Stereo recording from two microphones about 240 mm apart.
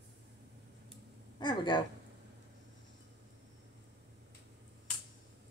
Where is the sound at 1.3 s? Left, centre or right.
Centre.